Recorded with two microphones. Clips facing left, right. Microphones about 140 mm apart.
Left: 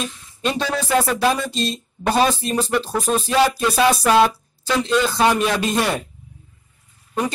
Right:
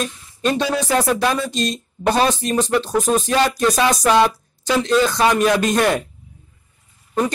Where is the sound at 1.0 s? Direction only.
Centre (ahead or behind).